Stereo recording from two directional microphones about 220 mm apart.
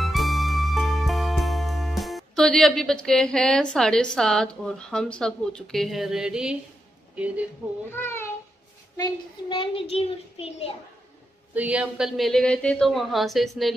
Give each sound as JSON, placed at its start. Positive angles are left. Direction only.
{"t": 0.0, "sound": "music", "side_deg": 0}
{"t": 7.9, "sound": "a child's voice", "side_deg": 10}
{"t": 8.9, "sound": "a child's voice", "side_deg": 20}
{"t": 11.5, "sound": "speech", "side_deg": -5}